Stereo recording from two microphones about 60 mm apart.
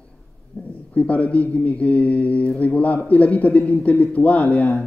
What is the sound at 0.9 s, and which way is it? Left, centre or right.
A man's voice, left.